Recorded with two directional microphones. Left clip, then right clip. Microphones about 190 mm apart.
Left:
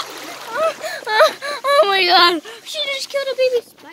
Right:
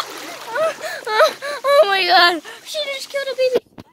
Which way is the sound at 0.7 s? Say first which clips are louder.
Left 1 dB; 5° right (ahead or behind).